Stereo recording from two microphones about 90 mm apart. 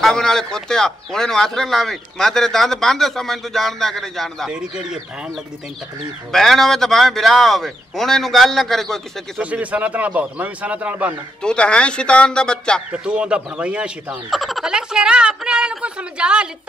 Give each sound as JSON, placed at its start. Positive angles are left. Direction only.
{"t": 0.0, "sound": "a man's voice", "side_deg": 5}
{"t": 4.5, "sound": "speech", "side_deg": -10}
{"t": 6.3, "sound": "a man's voice", "side_deg": 5}
{"t": 9.4, "sound": "speech", "side_deg": -15}
{"t": 11.4, "sound": "speech", "side_deg": 10}
{"t": 12.9, "sound": "speech", "side_deg": -10}
{"t": 14.3, "sound": "speech", "side_deg": 0}